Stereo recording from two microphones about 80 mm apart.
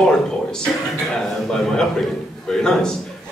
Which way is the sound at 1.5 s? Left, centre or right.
Centre.